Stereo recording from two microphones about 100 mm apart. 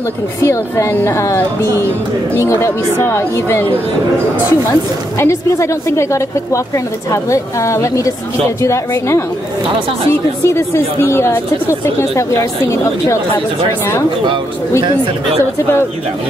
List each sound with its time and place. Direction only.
0.4 s speech: 30° left (ahead or behind)
5.2 s a woman's voice: 30° left (ahead or behind)
10.5 s speech: 25° left (ahead or behind)